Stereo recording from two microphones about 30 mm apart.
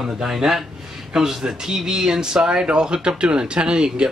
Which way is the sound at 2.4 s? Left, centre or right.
Right.